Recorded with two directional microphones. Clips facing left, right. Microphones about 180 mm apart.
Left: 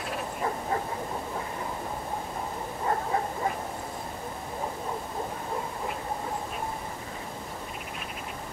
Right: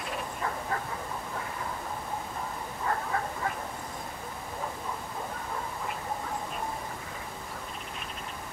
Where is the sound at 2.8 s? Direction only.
25° left (ahead or behind).